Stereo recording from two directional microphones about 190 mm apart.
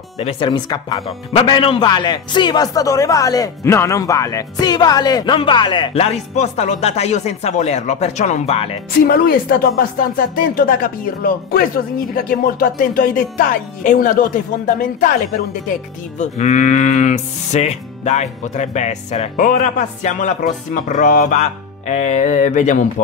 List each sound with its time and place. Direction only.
0.2 s speech: 30° left (ahead or behind)
1.0 s speech: 30° left (ahead or behind)
9.0 s speech: 50° left (ahead or behind)
16.2 s speech: 35° left (ahead or behind)